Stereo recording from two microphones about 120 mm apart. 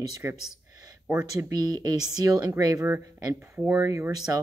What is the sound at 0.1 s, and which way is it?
Speech, 20° right (ahead or behind).